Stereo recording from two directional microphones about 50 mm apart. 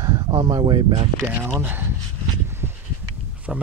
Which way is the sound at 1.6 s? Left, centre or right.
Right.